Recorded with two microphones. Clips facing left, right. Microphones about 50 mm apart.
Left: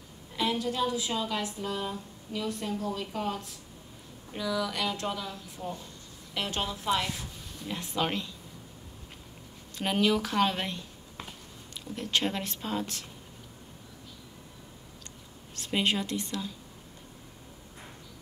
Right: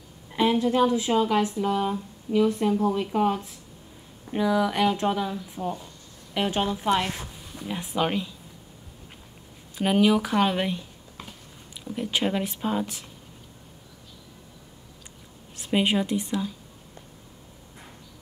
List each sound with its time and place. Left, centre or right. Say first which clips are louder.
0.4 s speech: right 8 dB; right
6.9 s speech: right 3 dB; right
7.5 s speech: right 5 dB; centre
9.8 s speech: right 6 dB; centre
15.5 s a woman's voice: right 5 dB; centre